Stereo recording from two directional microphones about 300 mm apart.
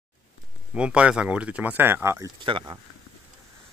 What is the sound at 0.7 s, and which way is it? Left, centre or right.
Speech, centre.